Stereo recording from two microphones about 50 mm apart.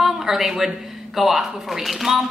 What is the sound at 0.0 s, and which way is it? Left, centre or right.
A woman's voice, centre.